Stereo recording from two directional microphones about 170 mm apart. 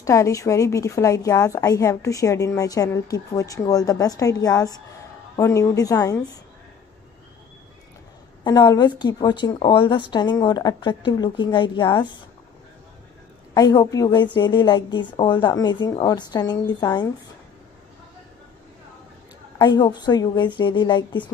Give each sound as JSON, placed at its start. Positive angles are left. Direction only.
{"t": 0.0, "sound": "a woman's voice", "side_deg": 20}
{"t": 8.5, "sound": "a woman's voice", "side_deg": 25}
{"t": 13.6, "sound": "a woman's voice", "side_deg": 20}
{"t": 19.6, "sound": "a woman's voice", "side_deg": 25}